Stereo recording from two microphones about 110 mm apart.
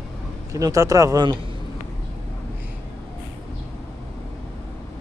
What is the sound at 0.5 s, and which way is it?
Speech, 30° right (ahead or behind).